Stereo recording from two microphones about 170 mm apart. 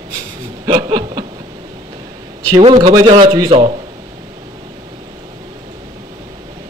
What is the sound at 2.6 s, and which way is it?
A man's voice, 35° right (ahead or behind).